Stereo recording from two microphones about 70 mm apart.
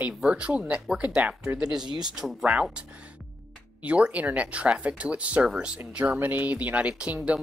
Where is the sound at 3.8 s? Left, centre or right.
Centre.